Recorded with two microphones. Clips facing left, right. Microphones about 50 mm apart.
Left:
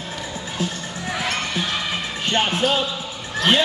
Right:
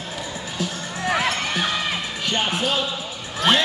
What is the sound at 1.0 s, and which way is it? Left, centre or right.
Basketball bounce, right.